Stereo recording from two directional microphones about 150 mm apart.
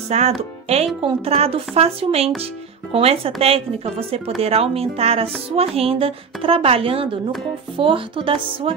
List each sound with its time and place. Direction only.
0.4 s a woman's voice: 45° right (ahead or behind)